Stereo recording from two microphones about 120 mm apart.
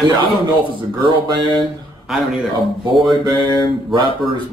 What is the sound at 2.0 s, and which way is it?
Speech, centre (ahead or behind).